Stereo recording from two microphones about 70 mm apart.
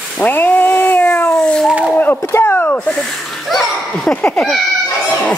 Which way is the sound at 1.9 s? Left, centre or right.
Left.